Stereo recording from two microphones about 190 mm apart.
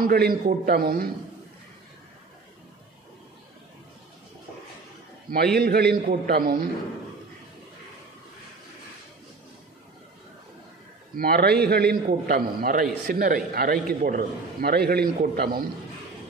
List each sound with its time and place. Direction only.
0.0 s a man's voice: 50° right (ahead or behind)
5.6 s a man's voice: 55° right (ahead or behind)
11.1 s a man's voice: 55° right (ahead or behind)